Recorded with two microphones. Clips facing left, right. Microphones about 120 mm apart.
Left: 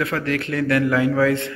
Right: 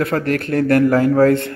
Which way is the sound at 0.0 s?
50° right (ahead or behind).